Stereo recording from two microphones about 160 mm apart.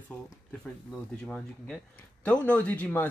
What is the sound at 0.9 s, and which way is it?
Speech, 5° left (ahead or behind).